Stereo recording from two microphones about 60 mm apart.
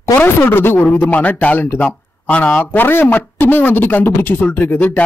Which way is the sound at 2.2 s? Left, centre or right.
Left.